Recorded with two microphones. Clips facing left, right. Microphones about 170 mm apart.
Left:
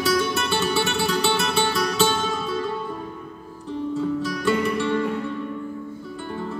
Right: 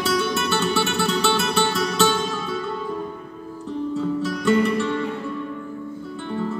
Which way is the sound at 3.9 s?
Centre (ahead or behind).